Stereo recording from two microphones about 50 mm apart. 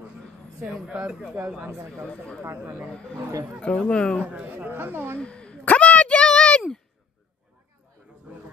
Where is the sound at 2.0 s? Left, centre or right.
Centre.